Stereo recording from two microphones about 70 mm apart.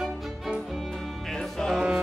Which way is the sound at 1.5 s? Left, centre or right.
Centre.